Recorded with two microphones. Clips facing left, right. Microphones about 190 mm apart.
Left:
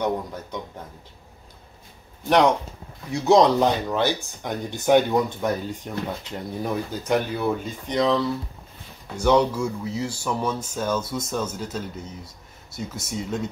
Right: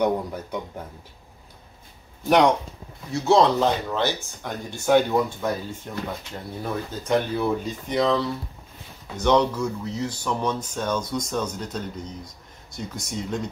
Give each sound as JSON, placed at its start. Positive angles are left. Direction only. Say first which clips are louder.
{"t": 0.0, "sound": "speech", "louder": "right 3 dB", "side_deg": -10}
{"t": 2.2, "sound": "speech", "louder": "even", "side_deg": 0}
{"t": 3.1, "sound": "speech", "louder": "left 2 dB", "side_deg": 15}